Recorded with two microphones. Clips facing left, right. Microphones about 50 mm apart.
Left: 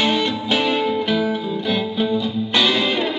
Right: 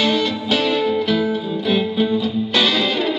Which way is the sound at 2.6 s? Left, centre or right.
Centre.